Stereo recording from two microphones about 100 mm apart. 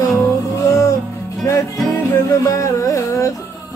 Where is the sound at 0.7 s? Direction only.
30° left (ahead or behind).